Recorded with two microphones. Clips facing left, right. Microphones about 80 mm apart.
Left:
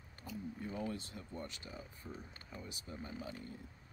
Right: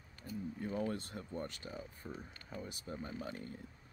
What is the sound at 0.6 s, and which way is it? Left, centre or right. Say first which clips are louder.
Speech: right 4 dB; right.